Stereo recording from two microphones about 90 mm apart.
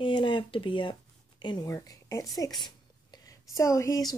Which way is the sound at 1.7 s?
35° left (ahead or behind).